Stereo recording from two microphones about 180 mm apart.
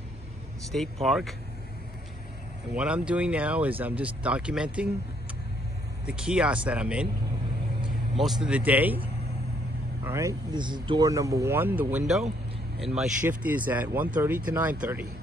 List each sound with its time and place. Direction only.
1.0 s speech: centre (ahead or behind)
2.7 s speech: 5° right (ahead or behind)
6.0 s speech: 5° right (ahead or behind)
8.2 s speech: centre (ahead or behind)
10.0 s speech: 15° right (ahead or behind)